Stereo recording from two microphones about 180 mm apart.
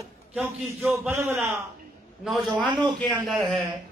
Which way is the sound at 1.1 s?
15° right (ahead or behind).